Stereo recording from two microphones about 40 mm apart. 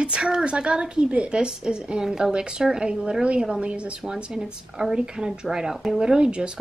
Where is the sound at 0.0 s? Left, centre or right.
Right.